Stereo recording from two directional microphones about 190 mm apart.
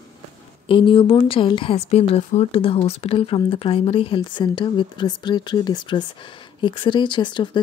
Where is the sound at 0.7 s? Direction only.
25° left (ahead or behind).